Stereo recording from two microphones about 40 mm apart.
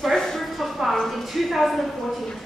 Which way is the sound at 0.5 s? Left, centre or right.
Centre.